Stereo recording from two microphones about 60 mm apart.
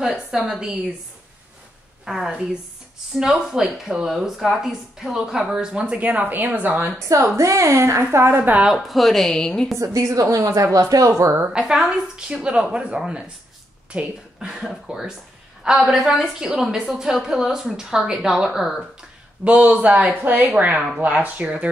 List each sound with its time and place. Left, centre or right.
0.0 s speech: centre
2.0 s speech: centre
5.9 s speech: right
7.3 s a woman's voice: right
8.0 s a woman's voice: right
8.4 s a woman's voice: right
8.7 s a woman's voice: centre
9.8 s a woman's voice: right
11.5 s a woman's voice: centre
19.4 s a woman's voice: right